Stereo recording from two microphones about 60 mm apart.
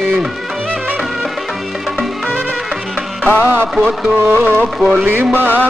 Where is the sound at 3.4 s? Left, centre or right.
Right.